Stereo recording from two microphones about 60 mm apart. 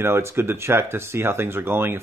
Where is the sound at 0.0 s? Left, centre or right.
Right.